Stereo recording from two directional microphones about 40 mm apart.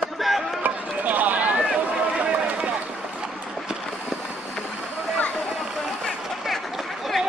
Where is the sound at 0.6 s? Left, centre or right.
Right.